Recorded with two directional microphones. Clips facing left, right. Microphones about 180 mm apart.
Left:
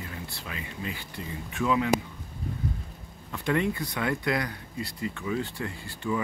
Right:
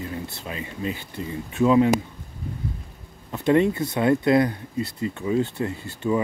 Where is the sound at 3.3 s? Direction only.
25° right (ahead or behind).